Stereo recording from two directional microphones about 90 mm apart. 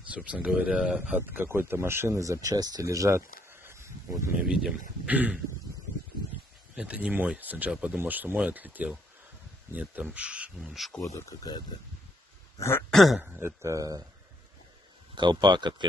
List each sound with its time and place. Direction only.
0.1 s speech: 15° right (ahead or behind)
1.3 s speech: 25° right (ahead or behind)
4.4 s speech: 5° right (ahead or behind)
5.0 s speech: 15° right (ahead or behind)
6.7 s speech: 15° right (ahead or behind)
8.0 s speech: 20° right (ahead or behind); by 10.9 s 5° right (ahead or behind)
11.0 s speech: 35° left (ahead or behind)
12.5 s speech: 30° left (ahead or behind)
12.9 s speech: centre (ahead or behind)
13.6 s speech: 35° right (ahead or behind)
15.1 s speech: 55° right (ahead or behind)